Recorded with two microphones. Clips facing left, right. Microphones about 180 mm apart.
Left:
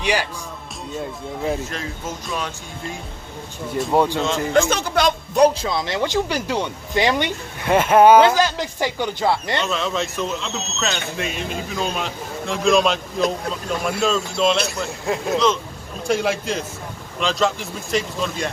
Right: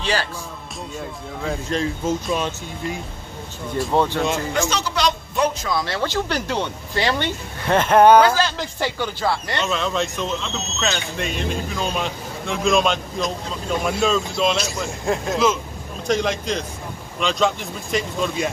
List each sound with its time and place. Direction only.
0.0 s speech: 15° left (ahead or behind)
1.7 s speech: 30° right (ahead or behind)
3.9 s speech: 10° left (ahead or behind)
4.6 s speech: 55° left (ahead or behind)
5.4 s speech: 25° left (ahead or behind)
9.6 s speech: centre (ahead or behind)
16.1 s speech: 5° left (ahead or behind)